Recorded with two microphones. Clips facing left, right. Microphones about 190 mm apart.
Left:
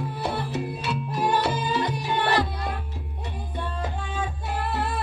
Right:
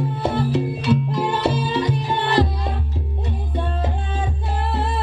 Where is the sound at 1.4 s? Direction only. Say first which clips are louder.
Right 4 dB; 25° right (ahead or behind).